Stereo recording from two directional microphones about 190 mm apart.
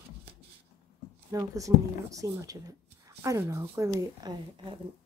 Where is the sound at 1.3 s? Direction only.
15° right (ahead or behind).